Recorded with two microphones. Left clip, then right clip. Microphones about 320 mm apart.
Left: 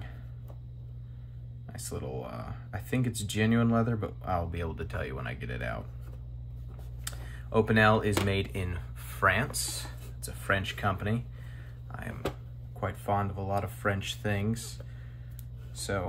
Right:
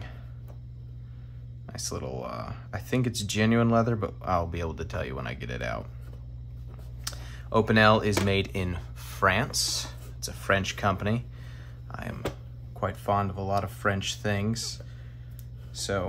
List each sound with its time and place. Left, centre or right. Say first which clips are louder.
1.7 s speech: right 4 dB; centre
7.1 s speech: right 5 dB; centre
15.8 s speech: right 4 dB; centre